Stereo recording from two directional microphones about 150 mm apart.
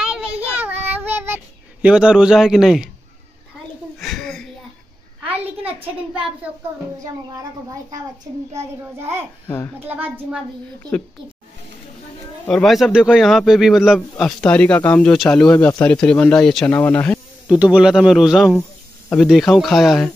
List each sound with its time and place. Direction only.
0.4 s child singing: 10° right (ahead or behind)
4.0 s a sound: 5° left (ahead or behind)
9.8 s a child's voice: 10° right (ahead or behind)
12.4 s speech: centre (ahead or behind)
17.5 s speech: 5° right (ahead or behind)